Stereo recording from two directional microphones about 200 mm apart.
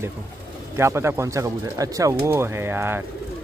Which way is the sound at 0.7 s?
15° right (ahead or behind).